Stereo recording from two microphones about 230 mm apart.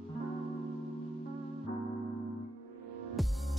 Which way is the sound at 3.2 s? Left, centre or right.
Centre.